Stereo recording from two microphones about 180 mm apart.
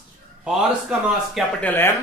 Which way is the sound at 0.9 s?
5° right (ahead or behind).